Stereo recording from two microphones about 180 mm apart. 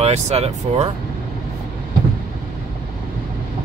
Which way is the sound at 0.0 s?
35° right (ahead or behind).